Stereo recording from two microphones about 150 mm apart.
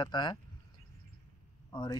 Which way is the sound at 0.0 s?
30° left (ahead or behind).